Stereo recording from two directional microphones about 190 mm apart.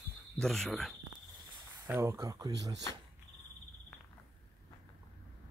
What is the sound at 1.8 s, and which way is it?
Speech, 15° right (ahead or behind).